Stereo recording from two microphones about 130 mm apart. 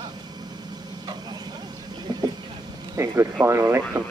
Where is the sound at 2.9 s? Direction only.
20° right (ahead or behind).